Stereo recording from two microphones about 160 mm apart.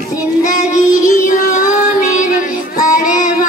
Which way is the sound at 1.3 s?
55° left (ahead or behind).